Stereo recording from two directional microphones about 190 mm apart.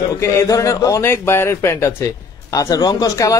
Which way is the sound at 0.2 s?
15° left (ahead or behind).